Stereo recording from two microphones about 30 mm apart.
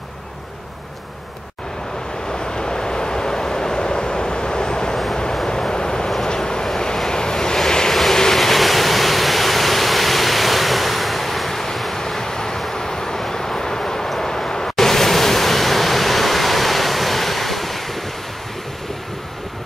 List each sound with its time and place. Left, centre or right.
2.4 s vehicle: left
7.9 s train: centre
8.4 s waterfall: centre
11.9 s vehicle: centre
14.2 s waves: centre